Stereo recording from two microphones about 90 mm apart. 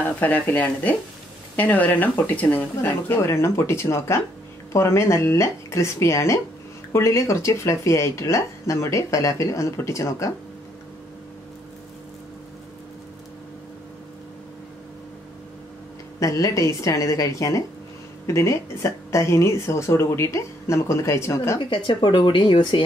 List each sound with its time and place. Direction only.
0.0 s speech: 20° left (ahead or behind); by 10.3 s 35° left (ahead or behind)
16.2 s speech: 35° left (ahead or behind)
21.5 s speech: 65° left (ahead or behind)